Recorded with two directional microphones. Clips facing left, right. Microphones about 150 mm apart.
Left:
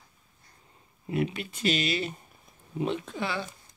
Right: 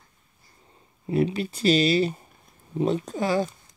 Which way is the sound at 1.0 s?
35° right (ahead or behind).